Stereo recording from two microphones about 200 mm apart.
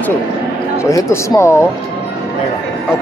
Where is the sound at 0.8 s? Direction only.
15° left (ahead or behind).